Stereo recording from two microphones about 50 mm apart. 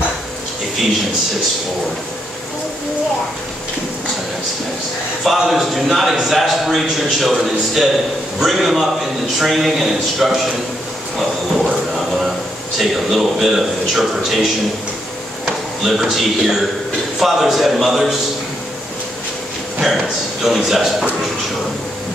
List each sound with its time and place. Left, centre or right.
5.2 s a man's voice: centre
11.6 s a sound: centre
12.7 s a man's voice: centre
20.4 s a man's voice: centre